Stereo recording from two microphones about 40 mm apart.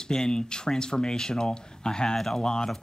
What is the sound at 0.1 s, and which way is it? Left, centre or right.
Speech, centre.